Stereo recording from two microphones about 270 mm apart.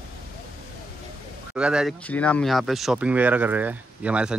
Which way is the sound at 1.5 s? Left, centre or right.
Centre.